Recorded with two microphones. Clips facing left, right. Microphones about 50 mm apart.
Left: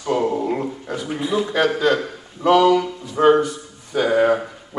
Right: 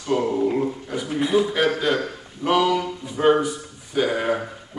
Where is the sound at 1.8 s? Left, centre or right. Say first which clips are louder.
Left 4 dB; centre.